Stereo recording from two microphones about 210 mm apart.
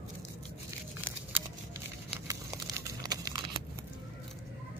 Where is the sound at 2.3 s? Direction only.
15° right (ahead or behind).